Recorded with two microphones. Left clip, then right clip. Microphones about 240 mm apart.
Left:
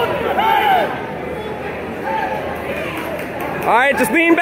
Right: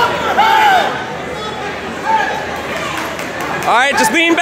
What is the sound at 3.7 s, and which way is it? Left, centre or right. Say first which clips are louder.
Speech: right 2 dB; centre.